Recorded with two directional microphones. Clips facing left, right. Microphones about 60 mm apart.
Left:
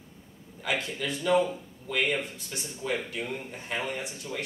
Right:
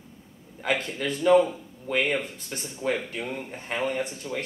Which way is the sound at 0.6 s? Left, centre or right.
Right.